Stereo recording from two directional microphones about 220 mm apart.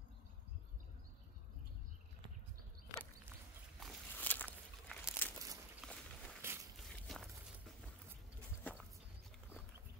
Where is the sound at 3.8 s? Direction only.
5° left (ahead or behind).